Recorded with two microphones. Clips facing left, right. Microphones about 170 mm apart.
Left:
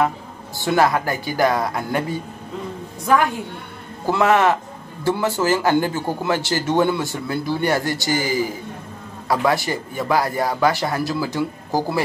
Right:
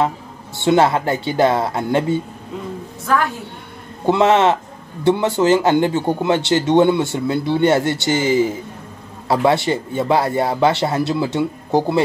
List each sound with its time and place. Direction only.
0.6 s speech: 25° right (ahead or behind)
3.1 s a woman's voice: 15° left (ahead or behind)
4.0 s speech: 20° right (ahead or behind)